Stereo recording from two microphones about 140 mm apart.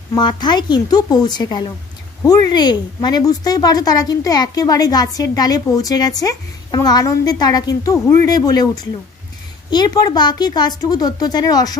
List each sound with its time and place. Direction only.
0.1 s a woman's voice: 35° left (ahead or behind)